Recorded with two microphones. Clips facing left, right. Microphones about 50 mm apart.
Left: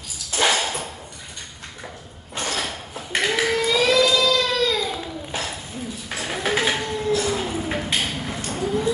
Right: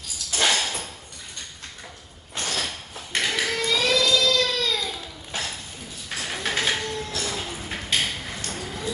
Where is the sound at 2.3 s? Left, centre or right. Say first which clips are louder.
Left 2 dB; centre.